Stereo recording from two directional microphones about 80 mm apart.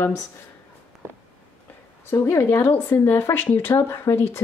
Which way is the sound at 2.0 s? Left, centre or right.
Left.